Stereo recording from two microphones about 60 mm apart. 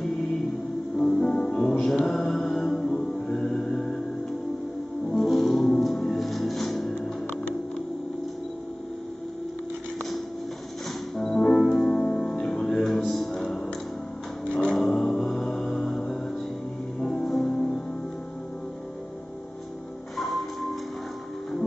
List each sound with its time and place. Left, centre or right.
0.9 s music: centre
5.1 s music: centre
11.1 s music: centre
14.5 s music: centre
14.8 s music: centre
20.2 s music: centre